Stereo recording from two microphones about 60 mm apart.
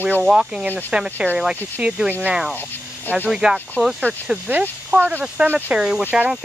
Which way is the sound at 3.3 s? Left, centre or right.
Centre.